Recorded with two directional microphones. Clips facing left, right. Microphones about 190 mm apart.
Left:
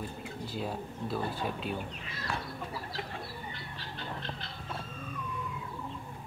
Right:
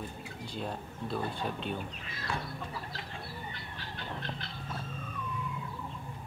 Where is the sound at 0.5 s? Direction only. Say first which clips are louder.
Left 1 dB; 5° left (ahead or behind).